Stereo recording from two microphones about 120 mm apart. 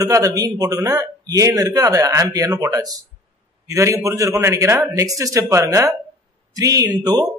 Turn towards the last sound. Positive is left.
turn(degrees=-35)  # may be behind; listen again after turning